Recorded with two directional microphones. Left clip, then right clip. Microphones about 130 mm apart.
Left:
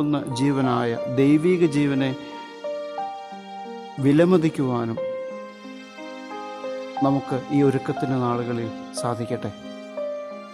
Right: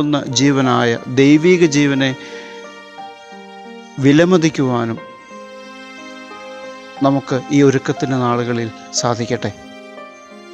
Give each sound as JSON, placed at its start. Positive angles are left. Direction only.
{"t": 0.0, "sound": "speech", "side_deg": -30}
{"t": 4.0, "sound": "speech", "side_deg": -35}
{"t": 7.2, "sound": "speech", "side_deg": -30}